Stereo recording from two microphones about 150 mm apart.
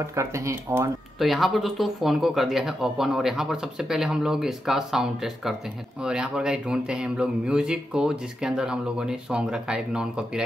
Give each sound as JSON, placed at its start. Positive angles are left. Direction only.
{"t": 0.0, "sound": "speech", "side_deg": -20}
{"t": 1.2, "sound": "speech", "side_deg": 0}